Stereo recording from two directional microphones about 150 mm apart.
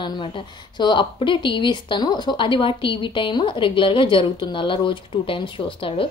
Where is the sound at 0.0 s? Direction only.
35° left (ahead or behind).